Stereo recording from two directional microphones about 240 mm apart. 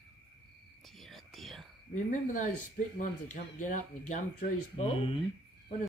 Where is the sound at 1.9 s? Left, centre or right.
Left.